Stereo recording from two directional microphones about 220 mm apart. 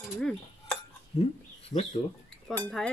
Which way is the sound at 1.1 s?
25° left (ahead or behind).